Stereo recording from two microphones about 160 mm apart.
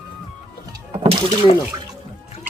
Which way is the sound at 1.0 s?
35° right (ahead or behind).